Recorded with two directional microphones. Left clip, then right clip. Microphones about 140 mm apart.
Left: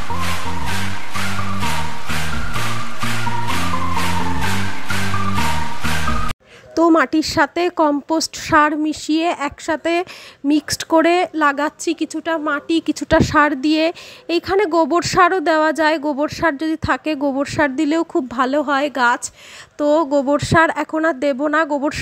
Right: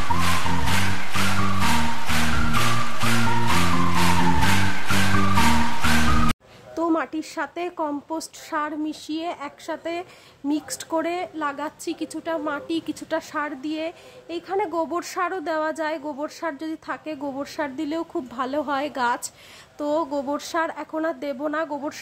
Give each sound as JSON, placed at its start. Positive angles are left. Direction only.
{"t": 0.1, "sound": "music", "side_deg": 0}
{"t": 6.7, "sound": "a woman's voice", "side_deg": 45}
{"t": 13.1, "sound": "a woman's voice", "side_deg": 45}